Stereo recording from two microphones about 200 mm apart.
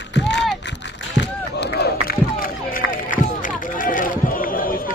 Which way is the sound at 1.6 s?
50° left (ahead or behind).